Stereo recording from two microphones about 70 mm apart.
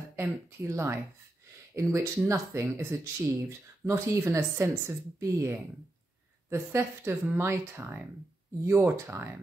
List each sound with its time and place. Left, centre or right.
0.1 s a woman's voice: right